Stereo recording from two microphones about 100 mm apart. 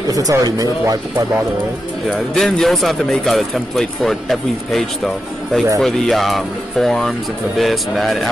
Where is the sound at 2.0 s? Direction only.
5° left (ahead or behind).